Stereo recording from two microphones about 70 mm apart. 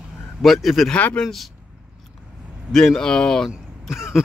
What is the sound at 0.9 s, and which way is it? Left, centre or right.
Speech, left.